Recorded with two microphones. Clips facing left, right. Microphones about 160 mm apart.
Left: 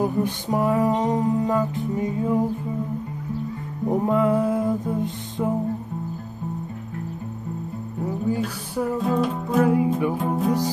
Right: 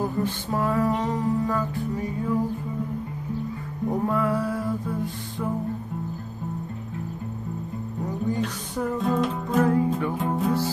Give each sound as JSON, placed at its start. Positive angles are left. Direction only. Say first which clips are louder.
{"t": 0.0, "sound": "music", "louder": "left 3 dB", "side_deg": 15}
{"t": 3.9, "sound": "music", "louder": "left 5 dB", "side_deg": 20}
{"t": 8.3, "sound": "music", "louder": "left 2 dB", "side_deg": 5}